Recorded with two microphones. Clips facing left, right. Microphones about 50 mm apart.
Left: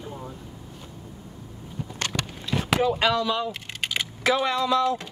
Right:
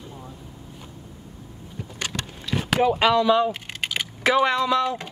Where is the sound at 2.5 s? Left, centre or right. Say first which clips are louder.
Right 2 dB; right.